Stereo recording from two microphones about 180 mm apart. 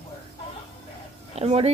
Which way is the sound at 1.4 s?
35° right (ahead or behind).